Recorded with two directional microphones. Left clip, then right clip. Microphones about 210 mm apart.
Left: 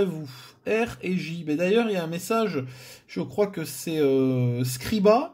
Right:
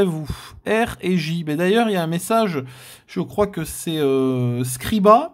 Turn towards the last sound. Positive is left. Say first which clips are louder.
# right 6 dB
turn(degrees=-30)  # may be behind; listen again after turning